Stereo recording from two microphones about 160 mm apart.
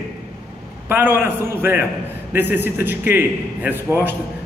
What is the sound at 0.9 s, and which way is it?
A man's voice, 15° right (ahead or behind).